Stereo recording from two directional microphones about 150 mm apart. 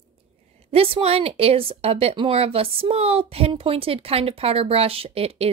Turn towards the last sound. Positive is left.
turn(degrees=-40)  # may be behind; listen again after turning